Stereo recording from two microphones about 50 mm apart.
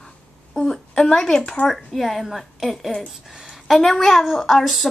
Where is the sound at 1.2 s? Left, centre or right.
Centre.